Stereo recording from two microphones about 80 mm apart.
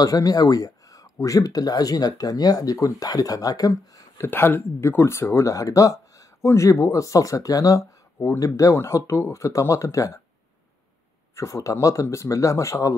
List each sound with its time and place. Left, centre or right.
0.0 s speech: left
4.2 s speech: left
8.2 s speech: left
11.3 s speech: left